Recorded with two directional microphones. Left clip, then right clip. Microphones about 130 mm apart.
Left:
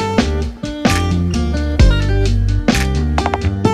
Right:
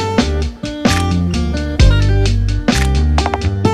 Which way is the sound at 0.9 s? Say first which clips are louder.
Right 1 dB; centre (ahead or behind).